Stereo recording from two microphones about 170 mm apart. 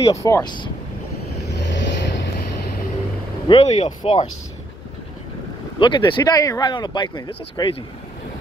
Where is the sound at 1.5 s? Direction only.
90° left.